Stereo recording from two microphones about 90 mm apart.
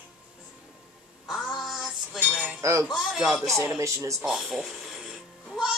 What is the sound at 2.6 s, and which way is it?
Cutlery, 35° right (ahead or behind).